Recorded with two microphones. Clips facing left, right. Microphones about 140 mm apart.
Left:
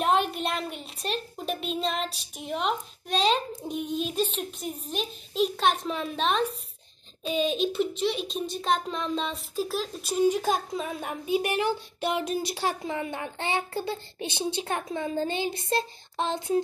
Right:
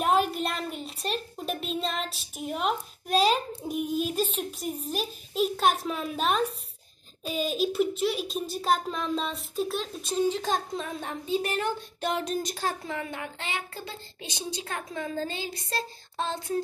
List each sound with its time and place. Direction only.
0.0 s a sound: centre (ahead or behind)
4.9 s a child's voice: 5° right (ahead or behind)
12.8 s a child's voice: 20° left (ahead or behind)